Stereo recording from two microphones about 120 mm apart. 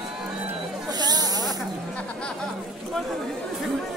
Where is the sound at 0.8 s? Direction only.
35° right (ahead or behind).